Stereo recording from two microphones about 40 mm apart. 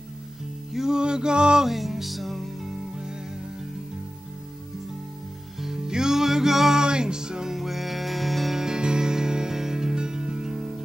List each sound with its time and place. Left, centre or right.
0.7 s a sound: centre
1.7 s music: centre
2.9 s music: centre
5.6 s music: centre
7.5 s music: centre
8.5 s music: centre